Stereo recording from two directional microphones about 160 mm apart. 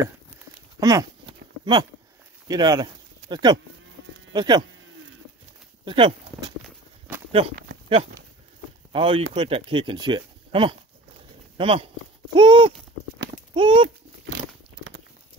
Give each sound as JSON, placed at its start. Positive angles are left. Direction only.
{"t": 0.7, "sound": "a sound", "side_deg": -25}
{"t": 2.4, "sound": "speech", "side_deg": -25}
{"t": 5.9, "sound": "speech", "side_deg": -30}
{"t": 8.9, "sound": "speech", "side_deg": -30}